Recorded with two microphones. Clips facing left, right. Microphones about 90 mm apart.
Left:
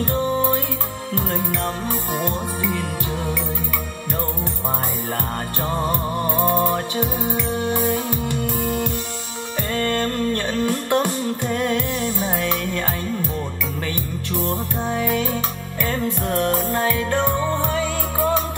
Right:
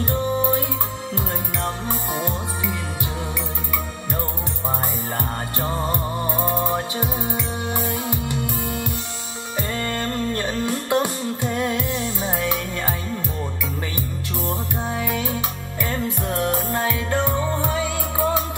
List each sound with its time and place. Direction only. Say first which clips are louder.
2.1 s music: left 2 dB; 15° right (ahead or behind)
6.5 s music: left 3 dB; 15° right (ahead or behind)
14.9 s music: left 4 dB; 15° right (ahead or behind)